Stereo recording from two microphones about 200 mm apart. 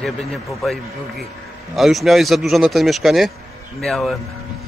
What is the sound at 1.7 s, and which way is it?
Speech, centre (ahead or behind).